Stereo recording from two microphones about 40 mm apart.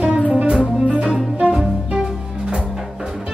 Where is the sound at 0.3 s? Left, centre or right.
Right.